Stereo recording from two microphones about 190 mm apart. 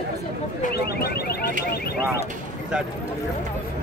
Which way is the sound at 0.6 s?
55° left (ahead or behind).